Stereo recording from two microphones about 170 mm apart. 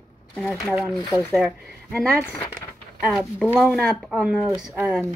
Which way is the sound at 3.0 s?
Centre (ahead or behind).